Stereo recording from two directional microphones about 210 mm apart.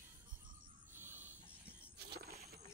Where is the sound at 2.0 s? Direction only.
50° right (ahead or behind).